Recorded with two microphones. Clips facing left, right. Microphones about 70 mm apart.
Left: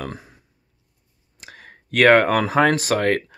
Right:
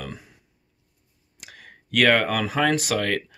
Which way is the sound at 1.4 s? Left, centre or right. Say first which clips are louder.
Left 3 dB; left.